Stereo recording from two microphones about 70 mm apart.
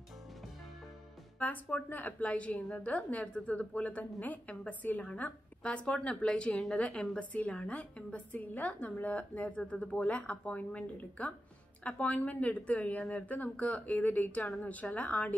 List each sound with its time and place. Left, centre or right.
1.4 s a woman's voice: left